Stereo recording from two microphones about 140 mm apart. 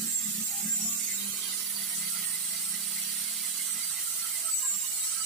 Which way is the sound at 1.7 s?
Centre (ahead or behind).